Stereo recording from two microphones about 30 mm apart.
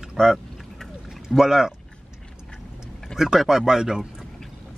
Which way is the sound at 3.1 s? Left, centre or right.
Centre.